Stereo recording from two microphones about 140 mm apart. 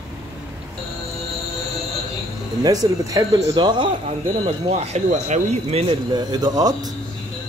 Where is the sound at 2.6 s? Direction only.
25° right (ahead or behind).